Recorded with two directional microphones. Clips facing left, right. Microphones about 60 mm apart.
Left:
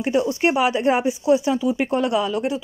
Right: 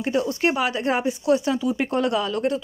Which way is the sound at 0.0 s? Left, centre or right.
Left.